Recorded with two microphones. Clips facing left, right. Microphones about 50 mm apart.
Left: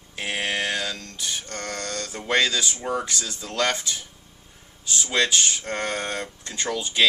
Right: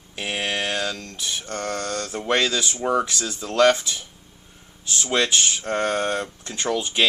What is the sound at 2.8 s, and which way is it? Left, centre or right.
Speech, right.